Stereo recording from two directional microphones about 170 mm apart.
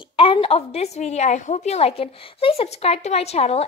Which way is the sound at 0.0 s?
30° left (ahead or behind).